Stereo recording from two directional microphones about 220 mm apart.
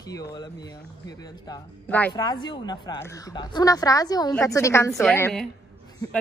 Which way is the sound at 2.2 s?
20° left (ahead or behind).